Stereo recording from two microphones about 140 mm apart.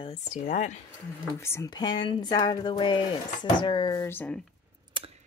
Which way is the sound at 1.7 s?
30° left (ahead or behind).